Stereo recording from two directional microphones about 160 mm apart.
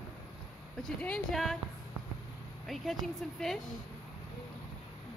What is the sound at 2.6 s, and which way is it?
Speech, centre (ahead or behind).